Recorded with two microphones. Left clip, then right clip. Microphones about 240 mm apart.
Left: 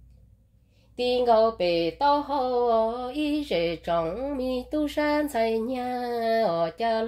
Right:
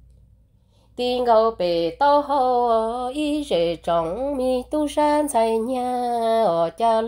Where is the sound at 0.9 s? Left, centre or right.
Right.